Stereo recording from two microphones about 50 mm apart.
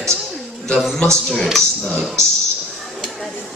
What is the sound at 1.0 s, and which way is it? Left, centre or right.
Speech, centre.